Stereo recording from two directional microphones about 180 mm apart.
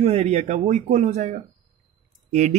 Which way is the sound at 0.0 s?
35° right (ahead or behind).